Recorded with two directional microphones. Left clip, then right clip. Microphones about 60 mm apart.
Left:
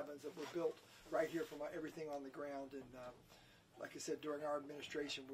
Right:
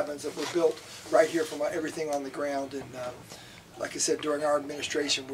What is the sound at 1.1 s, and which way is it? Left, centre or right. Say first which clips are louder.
Speech: right 17 dB; centre.